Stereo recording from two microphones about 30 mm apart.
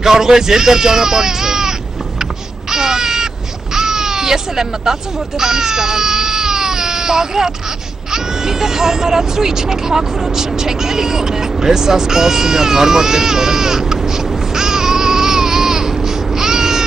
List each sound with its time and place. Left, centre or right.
0.0 s baby cry: centre
2.7 s a sound: centre
5.4 s baby cry: centre
8.1 s speech: centre